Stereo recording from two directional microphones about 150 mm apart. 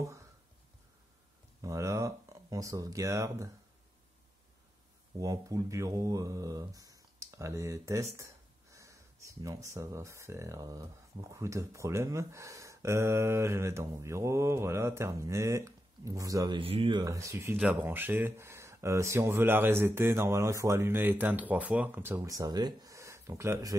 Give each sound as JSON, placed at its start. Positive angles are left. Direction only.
{"t": 1.6, "sound": "speech", "side_deg": -20}
{"t": 5.2, "sound": "speech", "side_deg": -25}
{"t": 16.5, "sound": "speech", "side_deg": -35}
{"t": 17.0, "sound": "speech", "side_deg": -20}
{"t": 17.6, "sound": "speech", "side_deg": -5}